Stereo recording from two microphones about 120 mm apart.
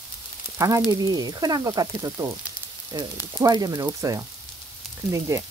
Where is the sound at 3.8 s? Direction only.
25° right (ahead or behind).